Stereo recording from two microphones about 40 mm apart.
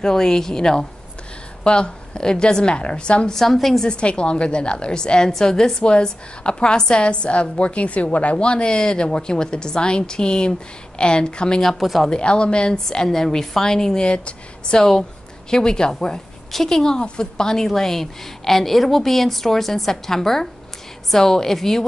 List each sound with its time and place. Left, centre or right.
0.0 s a woman's voice: centre
3.3 s speech: centre
3.8 s a woman's voice: left
11.6 s speech: centre
12.1 s a woman's voice: left
12.8 s a woman's voice: centre